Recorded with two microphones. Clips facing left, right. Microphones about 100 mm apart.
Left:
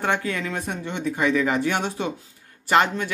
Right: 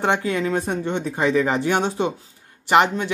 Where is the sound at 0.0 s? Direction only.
25° right (ahead or behind).